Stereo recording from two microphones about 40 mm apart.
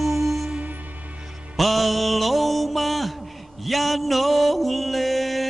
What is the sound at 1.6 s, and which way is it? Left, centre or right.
Music, centre.